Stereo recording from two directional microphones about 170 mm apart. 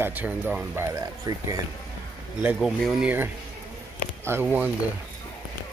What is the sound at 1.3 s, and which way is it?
Speech, 20° right (ahead or behind).